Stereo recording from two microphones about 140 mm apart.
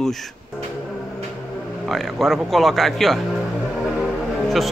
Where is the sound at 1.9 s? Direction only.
Centre (ahead or behind).